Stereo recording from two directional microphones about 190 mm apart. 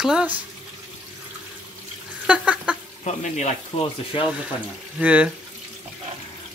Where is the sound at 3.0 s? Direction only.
40° left (ahead or behind).